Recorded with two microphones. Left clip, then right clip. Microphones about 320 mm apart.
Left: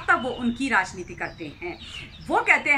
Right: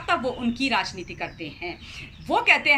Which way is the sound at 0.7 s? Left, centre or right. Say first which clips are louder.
Left 3 dB; centre.